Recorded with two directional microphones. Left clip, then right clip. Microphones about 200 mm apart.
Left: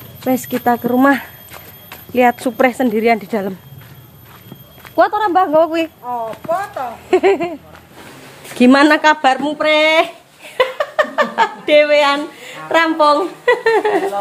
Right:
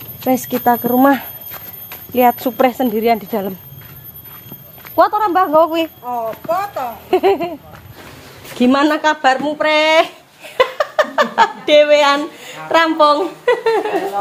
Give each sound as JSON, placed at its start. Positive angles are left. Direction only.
{"t": 0.2, "sound": "speech", "side_deg": -10}
{"t": 0.7, "sound": "a sound", "side_deg": 0}
{"t": 2.1, "sound": "a woman's voice", "side_deg": 0}
{"t": 4.9, "sound": "a woman's voice", "side_deg": 0}
{"t": 6.0, "sound": "speech", "side_deg": -45}
{"t": 7.1, "sound": "a woman's voice", "side_deg": 5}
{"t": 8.5, "sound": "a woman's voice", "side_deg": 20}
{"t": 9.6, "sound": "speech", "side_deg": 0}